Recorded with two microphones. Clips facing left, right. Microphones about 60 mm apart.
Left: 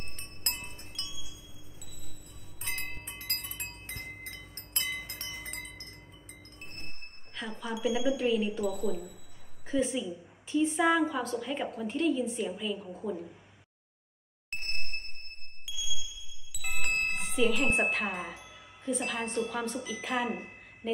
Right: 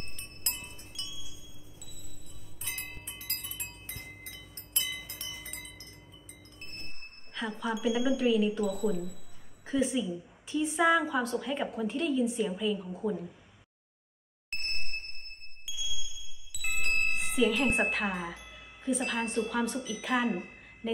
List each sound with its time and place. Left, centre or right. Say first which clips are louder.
0.1 s wind chime: left 2 dB; left
2.6 s wind chime: left 3 dB; left
7.3 s a woman's voice: right 3 dB; centre
14.5 s ding: even; centre
15.7 s music: left 1 dB; centre
16.5 s speech: right 1 dB; centre
20.8 s a sound: even; centre